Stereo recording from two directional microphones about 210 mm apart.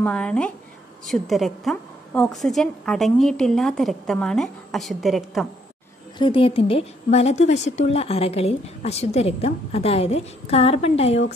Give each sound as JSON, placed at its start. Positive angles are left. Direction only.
{"t": 0.0, "sound": "a woman's voice", "side_deg": 5}
{"t": 6.1, "sound": "a woman's voice", "side_deg": 25}